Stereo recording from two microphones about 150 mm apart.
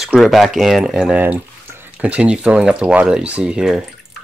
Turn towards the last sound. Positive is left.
turn(degrees=-5)  # may be behind; listen again after turning